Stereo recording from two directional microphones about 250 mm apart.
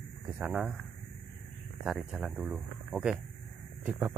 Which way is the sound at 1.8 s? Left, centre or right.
Centre.